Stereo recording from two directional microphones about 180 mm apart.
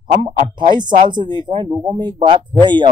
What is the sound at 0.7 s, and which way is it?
Speech, 25° right (ahead or behind).